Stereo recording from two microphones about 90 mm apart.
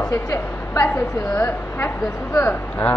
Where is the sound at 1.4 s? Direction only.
20° left (ahead or behind).